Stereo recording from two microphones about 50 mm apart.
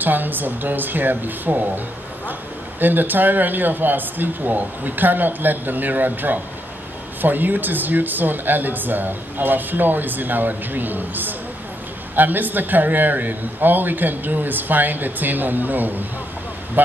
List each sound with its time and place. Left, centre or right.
0.0 s speech: right
2.8 s speech: right